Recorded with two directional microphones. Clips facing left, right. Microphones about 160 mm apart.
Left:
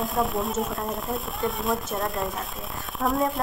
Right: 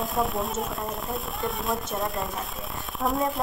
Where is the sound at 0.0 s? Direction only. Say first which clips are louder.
Left 1 dB; centre (ahead or behind).